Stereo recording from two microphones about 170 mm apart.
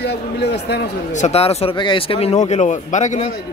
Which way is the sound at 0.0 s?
75° left (ahead or behind).